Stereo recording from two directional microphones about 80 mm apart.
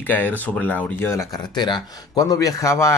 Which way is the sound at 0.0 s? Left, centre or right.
Left.